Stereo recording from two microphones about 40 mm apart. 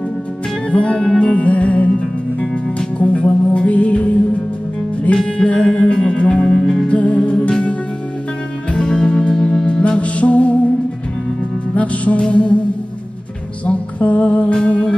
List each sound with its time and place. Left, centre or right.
0.7 s music: left
5.1 s music: centre
5.5 s music: left
6.5 s music: centre
6.9 s music: left
7.3 s music: centre
8.7 s music: left
9.7 s music: left
11.7 s music: left
13.7 s music: left